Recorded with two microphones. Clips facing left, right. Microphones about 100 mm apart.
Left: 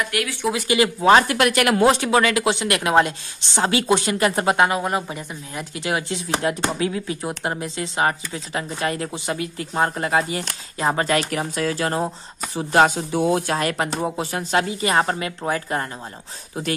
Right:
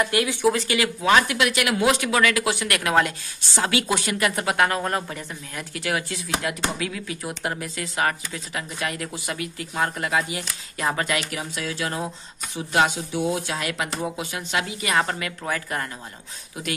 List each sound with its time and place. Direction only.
0.1 s speech: 25° right (ahead or behind)
0.7 s speech: 30° left (ahead or behind); by 1.9 s 45° left (ahead or behind)
1.9 s speech: 30° left (ahead or behind)
4.6 s speech: 15° left (ahead or behind); by 16.7 s 35° left (ahead or behind)